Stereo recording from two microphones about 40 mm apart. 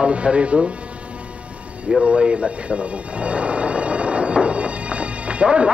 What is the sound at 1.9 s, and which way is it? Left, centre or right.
Music, centre.